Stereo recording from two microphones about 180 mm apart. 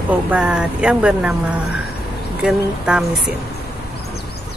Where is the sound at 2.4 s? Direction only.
5° right (ahead or behind).